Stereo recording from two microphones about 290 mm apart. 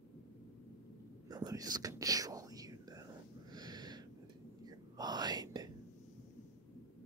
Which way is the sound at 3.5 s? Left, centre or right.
Centre.